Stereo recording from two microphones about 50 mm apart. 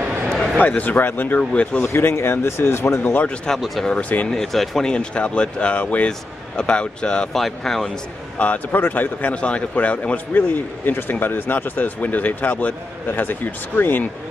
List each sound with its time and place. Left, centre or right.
0.6 s speech: left
1.5 s speech: left
1.8 s speech: left
3.0 s speech: left
3.5 s speech: centre
3.8 s speech: left
4.3 s speech: centre
4.8 s speech: left
7.3 s speech: centre
8.4 s speech: left
9.3 s speech: left
10.3 s speech: left